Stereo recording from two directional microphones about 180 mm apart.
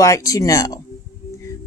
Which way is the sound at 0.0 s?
20° left (ahead or behind).